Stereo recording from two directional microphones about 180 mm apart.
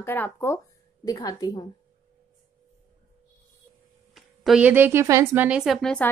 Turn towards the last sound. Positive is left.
turn(degrees=5)  # may be behind; listen again after turning